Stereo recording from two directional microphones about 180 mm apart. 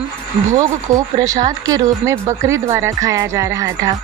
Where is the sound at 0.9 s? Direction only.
20° right (ahead or behind).